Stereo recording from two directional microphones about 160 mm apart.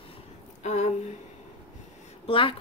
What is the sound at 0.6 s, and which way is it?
Speech, 45° left (ahead or behind).